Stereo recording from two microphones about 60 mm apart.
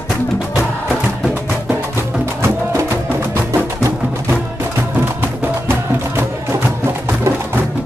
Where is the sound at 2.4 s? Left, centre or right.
Right.